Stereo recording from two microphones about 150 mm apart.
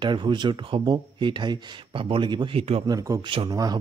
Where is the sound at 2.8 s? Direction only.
25° right (ahead or behind).